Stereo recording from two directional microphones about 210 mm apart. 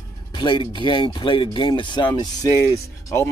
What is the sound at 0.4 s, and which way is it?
Speech, 25° left (ahead or behind).